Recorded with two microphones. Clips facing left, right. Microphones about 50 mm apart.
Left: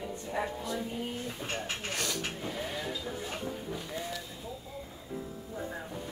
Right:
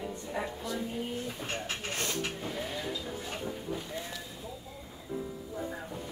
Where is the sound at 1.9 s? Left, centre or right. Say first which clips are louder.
Right 1 dB; right.